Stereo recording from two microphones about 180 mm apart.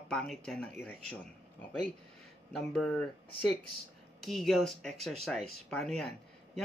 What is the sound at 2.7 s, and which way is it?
A man's voice, 5° left (ahead or behind).